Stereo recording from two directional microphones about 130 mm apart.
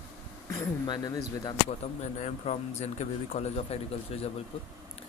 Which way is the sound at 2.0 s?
60° left (ahead or behind).